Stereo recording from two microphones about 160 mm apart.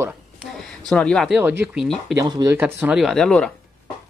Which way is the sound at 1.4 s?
10° right (ahead or behind).